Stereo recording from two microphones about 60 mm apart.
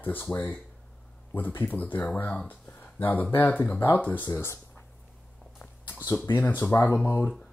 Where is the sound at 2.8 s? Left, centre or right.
Left.